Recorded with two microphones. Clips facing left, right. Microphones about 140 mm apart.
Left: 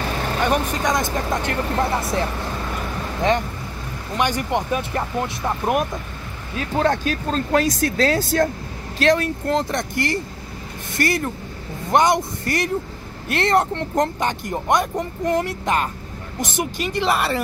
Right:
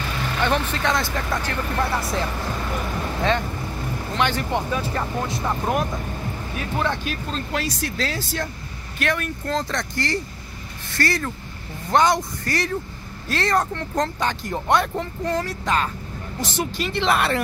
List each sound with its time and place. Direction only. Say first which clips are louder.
0.4 s speech: left 1 dB; 15° left (ahead or behind)
6.8 s speech: left 7 dB; 45° left (ahead or behind)
8.9 s speech: left 7 dB; 35° left (ahead or behind)
9.5 s speech: left 3 dB; 20° left (ahead or behind)
11.0 s a woman's voice: left 2 dB; 20° left (ahead or behind)
16.7 s speech: left 1 dB; 50° left (ahead or behind)
17.0 s speech: even; 10° left (ahead or behind)